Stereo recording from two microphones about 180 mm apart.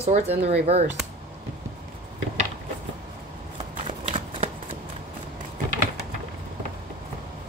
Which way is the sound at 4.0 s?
35° right (ahead or behind).